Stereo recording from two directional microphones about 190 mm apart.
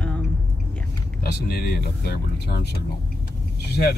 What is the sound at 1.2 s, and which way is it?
Speech, 55° left (ahead or behind).